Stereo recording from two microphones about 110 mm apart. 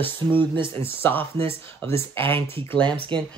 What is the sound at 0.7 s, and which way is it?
Speech, 20° left (ahead or behind).